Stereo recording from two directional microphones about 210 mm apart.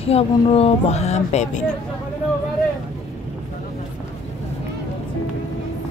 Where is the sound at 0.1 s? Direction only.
30° left (ahead or behind).